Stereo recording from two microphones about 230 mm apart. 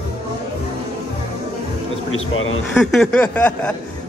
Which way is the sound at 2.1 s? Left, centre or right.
Left.